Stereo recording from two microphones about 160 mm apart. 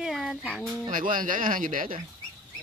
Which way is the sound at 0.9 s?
55° right (ahead or behind).